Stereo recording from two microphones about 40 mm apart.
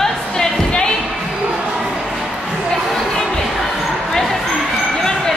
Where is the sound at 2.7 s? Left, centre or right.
Centre.